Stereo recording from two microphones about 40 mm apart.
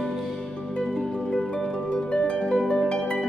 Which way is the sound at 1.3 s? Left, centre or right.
Left.